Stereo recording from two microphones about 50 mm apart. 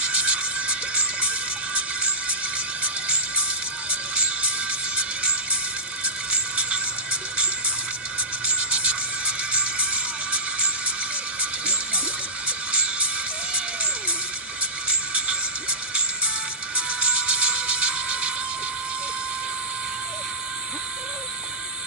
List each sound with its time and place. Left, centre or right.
0.0 s music: right
8.5 s music: right
12.4 s music: right
14.9 s music: right
16.7 s music: right